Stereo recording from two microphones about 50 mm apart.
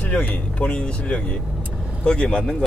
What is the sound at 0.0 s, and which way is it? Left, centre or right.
Speech, left.